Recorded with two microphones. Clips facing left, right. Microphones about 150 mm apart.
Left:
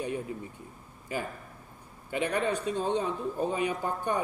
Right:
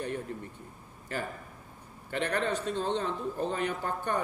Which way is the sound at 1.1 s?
10° left (ahead or behind).